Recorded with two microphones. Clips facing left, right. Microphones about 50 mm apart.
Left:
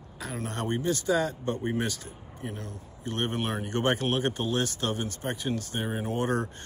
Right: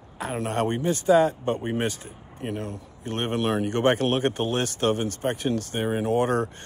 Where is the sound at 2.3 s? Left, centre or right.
Right.